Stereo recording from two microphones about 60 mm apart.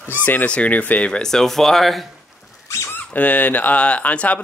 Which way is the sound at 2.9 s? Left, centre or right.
Left.